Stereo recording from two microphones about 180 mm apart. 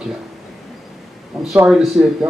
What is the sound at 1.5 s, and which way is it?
Speech, 5° right (ahead or behind).